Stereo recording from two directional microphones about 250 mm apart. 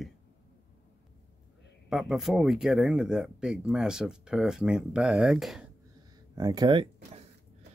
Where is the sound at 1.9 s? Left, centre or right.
Centre.